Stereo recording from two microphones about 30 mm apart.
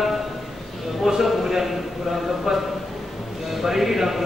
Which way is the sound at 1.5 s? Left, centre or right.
Centre.